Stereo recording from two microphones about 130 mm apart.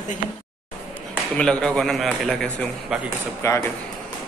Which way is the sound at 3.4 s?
20° left (ahead or behind).